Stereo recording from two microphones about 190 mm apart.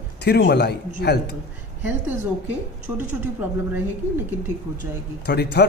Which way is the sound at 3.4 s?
10° right (ahead or behind).